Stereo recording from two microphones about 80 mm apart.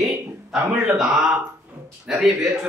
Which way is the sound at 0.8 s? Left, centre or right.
Centre.